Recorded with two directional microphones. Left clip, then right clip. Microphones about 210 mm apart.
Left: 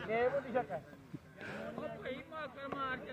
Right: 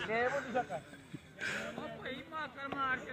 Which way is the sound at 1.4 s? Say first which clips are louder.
Right 7 dB; centre (ahead or behind).